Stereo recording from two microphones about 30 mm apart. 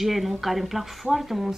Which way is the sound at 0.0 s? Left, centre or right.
Centre.